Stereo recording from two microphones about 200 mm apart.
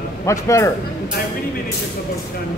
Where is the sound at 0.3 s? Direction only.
15° left (ahead or behind).